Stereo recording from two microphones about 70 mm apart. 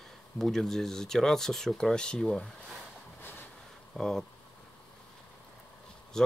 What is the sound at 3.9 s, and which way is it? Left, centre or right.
Speech, centre.